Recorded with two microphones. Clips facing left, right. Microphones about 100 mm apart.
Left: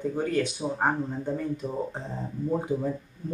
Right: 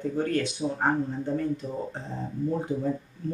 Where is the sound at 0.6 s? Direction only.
30° left (ahead or behind).